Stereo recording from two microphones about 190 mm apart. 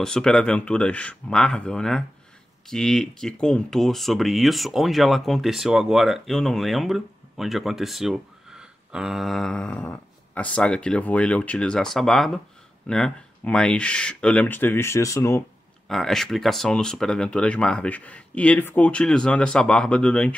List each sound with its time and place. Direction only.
0.0 s speech: 5° left (ahead or behind)
15.9 s speech: centre (ahead or behind)